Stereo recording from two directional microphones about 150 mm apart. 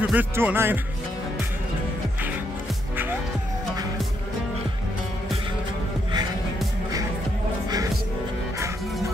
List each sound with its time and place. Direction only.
0.0 s speech: 10° right (ahead or behind)